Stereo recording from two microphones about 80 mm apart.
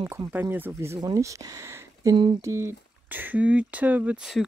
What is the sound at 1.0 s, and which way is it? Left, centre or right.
Speech, right.